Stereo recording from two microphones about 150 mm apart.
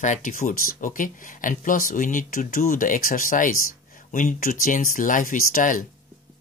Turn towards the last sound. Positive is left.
turn(degrees=65)  # may be behind; listen again after turning